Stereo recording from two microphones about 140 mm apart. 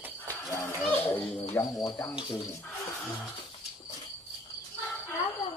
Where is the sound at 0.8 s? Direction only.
15° left (ahead or behind).